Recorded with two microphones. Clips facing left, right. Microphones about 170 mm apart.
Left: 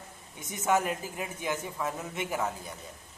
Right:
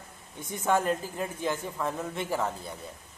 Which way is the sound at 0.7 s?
10° left (ahead or behind).